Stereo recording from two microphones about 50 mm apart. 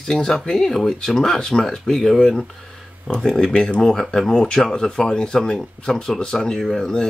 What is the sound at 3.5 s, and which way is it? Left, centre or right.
Speech, centre.